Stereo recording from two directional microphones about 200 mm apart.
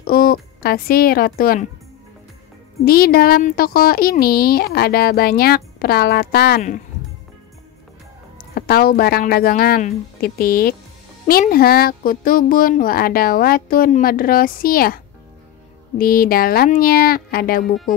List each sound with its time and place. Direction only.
0.0 s speech: 45° left (ahead or behind)
2.8 s speech: 50° left (ahead or behind)
8.4 s speech: 50° left (ahead or behind)
16.0 s speech: 45° left (ahead or behind)